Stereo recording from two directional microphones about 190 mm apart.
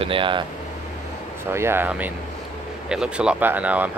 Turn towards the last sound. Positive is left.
turn(degrees=-10)  # may be behind; listen again after turning